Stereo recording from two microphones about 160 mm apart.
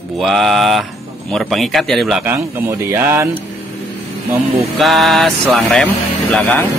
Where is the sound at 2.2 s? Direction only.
15° right (ahead or behind).